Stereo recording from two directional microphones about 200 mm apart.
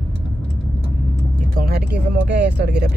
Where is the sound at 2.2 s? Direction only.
55° right (ahead or behind).